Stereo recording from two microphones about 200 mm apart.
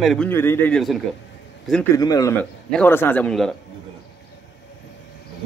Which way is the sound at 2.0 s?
15° left (ahead or behind).